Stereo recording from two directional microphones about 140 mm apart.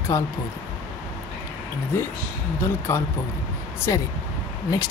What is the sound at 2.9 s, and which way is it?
Speech, 15° left (ahead or behind).